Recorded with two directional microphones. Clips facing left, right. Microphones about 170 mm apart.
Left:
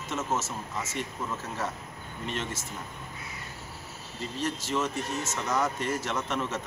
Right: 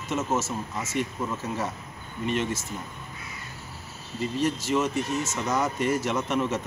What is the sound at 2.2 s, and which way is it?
Speech, 10° right (ahead or behind).